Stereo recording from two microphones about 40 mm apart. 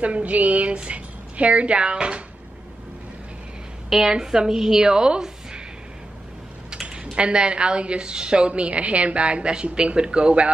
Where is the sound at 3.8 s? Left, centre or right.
Centre.